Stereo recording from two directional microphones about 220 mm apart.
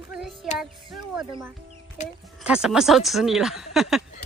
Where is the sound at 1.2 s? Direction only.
20° right (ahead or behind).